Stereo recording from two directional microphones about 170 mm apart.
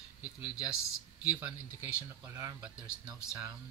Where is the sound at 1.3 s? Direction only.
15° right (ahead or behind).